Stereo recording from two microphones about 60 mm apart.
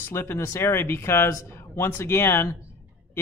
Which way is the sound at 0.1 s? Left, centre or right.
Left.